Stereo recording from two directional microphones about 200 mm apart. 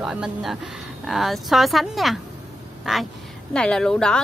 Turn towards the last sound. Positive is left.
turn(degrees=5)  # may be behind; listen again after turning